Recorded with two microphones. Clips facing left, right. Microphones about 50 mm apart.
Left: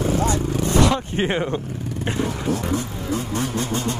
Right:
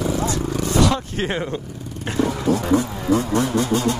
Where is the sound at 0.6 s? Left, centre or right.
Left.